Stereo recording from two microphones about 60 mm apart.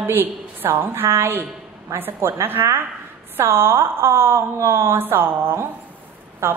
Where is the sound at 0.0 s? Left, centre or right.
Right.